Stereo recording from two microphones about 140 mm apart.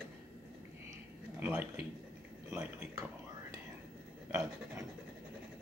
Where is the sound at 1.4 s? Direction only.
15° right (ahead or behind).